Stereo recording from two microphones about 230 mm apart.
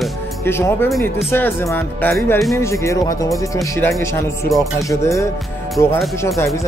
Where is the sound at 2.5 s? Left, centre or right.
Centre.